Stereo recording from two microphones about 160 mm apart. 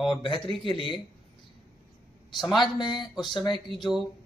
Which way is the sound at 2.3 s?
Centre (ahead or behind).